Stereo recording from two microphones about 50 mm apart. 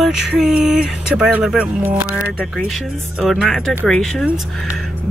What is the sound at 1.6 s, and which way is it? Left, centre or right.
Speech, right.